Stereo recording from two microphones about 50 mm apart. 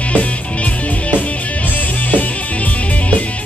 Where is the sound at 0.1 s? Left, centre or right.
Left.